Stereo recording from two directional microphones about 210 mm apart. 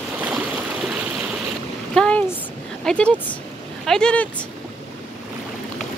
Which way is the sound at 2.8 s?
5° left (ahead or behind).